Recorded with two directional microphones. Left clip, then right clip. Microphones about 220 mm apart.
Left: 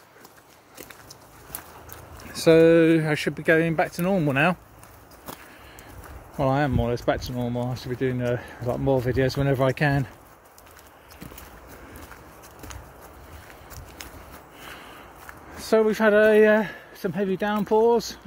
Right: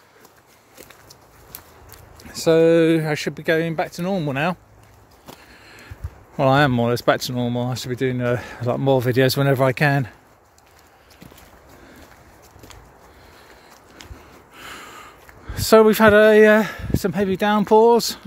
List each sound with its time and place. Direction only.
2.2 s a sound: 20° right (ahead or behind)
2.7 s speech: 30° right (ahead or behind)
6.3 s speech: 50° right (ahead or behind)
15.5 s speech: 55° right (ahead or behind)